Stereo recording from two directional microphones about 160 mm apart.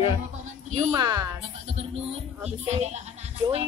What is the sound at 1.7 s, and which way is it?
Speech, 40° right (ahead or behind).